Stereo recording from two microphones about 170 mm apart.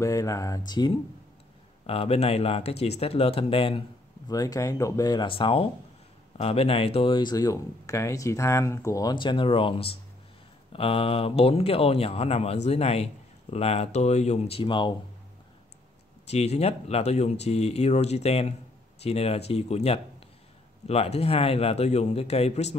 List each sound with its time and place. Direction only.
0.0 s speech: 20° left (ahead or behind)
1.9 s speech: 35° left (ahead or behind)
4.3 s speech: 20° left (ahead or behind)
16.3 s speech: 40° left (ahead or behind)